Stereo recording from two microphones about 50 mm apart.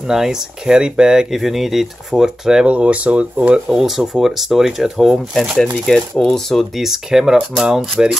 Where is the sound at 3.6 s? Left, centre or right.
Centre.